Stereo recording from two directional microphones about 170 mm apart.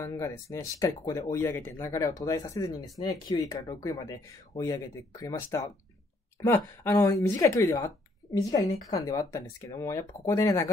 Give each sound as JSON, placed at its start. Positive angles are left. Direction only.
{"t": 0.0, "sound": "speech", "side_deg": 15}